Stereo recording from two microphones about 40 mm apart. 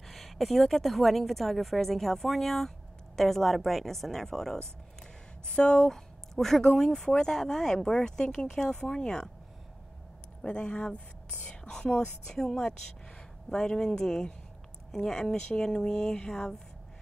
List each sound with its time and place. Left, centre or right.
0.0 s a woman's voice: centre
5.5 s speech: left
5.9 s speech: centre
10.4 s speech: left
12.3 s speech: centre